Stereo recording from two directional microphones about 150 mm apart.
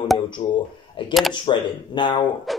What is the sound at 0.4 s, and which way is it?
Speech, 35° left (ahead or behind).